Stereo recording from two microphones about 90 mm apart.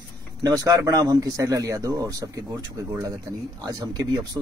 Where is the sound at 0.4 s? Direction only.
40° right (ahead or behind).